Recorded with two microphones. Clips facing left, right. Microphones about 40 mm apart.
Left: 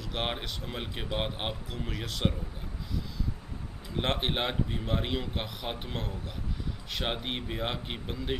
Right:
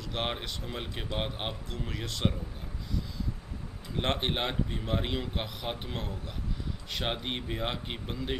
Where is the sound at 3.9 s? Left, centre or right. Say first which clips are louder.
Even; centre.